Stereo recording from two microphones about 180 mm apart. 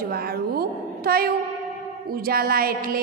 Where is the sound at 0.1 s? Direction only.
60° right (ahead or behind).